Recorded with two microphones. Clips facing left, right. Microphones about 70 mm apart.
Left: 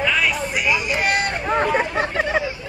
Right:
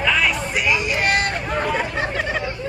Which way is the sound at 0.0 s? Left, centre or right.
Centre.